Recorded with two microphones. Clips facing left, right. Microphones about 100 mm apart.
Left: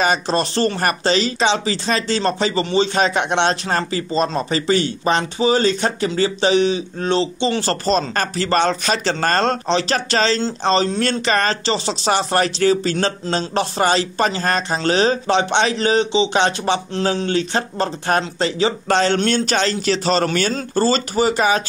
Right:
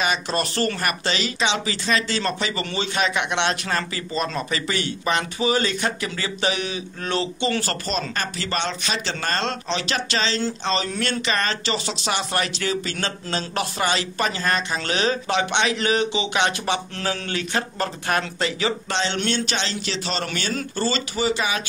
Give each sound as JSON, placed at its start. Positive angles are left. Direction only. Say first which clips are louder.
{"t": 0.0, "sound": "speech", "louder": "left 5 dB", "side_deg": 35}